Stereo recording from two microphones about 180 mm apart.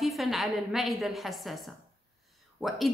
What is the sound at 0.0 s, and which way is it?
A woman's voice, centre (ahead or behind).